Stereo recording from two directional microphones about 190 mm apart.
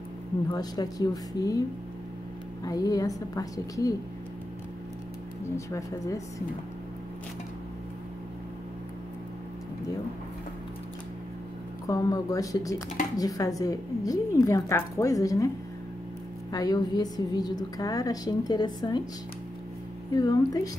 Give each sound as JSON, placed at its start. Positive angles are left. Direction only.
{"t": 0.5, "sound": "a woman's voice", "side_deg": 20}
{"t": 2.6, "sound": "a woman's voice", "side_deg": 20}
{"t": 5.7, "sound": "a woman's voice", "side_deg": 15}
{"t": 11.9, "sound": "a woman's voice", "side_deg": 20}
{"t": 16.5, "sound": "a woman's voice", "side_deg": 20}
{"t": 20.2, "sound": "a woman's voice", "side_deg": 20}